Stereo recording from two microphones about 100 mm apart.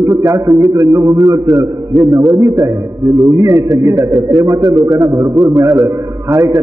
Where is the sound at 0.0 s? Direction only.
30° right (ahead or behind).